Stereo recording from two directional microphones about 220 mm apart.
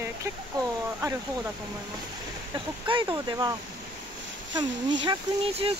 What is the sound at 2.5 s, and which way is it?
Speech, 20° right (ahead or behind).